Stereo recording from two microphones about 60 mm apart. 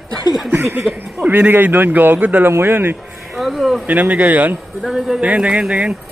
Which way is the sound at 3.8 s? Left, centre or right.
Right.